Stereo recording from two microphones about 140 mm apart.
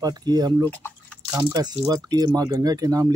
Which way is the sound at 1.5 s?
30° right (ahead or behind).